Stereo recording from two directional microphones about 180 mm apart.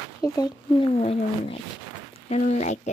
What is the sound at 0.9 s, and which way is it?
Speech, 35° left (ahead or behind).